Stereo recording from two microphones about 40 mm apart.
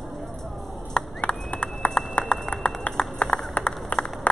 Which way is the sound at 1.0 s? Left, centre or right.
Left.